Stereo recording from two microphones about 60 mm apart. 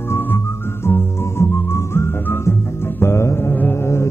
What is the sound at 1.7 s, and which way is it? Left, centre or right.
Music, left.